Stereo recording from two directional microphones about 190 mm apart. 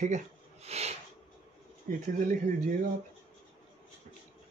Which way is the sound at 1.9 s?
50° right (ahead or behind).